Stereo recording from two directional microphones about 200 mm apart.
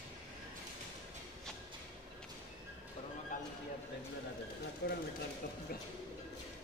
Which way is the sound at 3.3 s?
40° left (ahead or behind).